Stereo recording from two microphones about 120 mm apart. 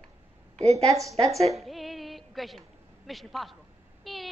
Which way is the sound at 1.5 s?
Centre (ahead or behind).